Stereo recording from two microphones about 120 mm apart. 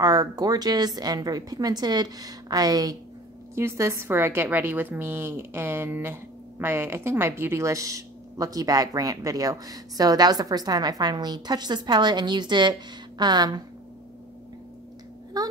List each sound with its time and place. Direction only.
0.0 s a woman's voice: 30° right (ahead or behind)
15.3 s a woman's voice: 30° right (ahead or behind)